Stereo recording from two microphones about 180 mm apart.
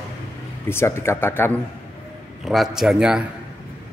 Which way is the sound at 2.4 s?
Centre (ahead or behind).